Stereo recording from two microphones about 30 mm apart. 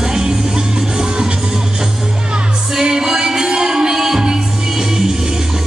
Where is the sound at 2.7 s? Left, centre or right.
Right.